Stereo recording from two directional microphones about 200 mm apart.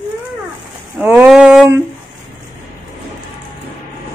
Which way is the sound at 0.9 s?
10° right (ahead or behind).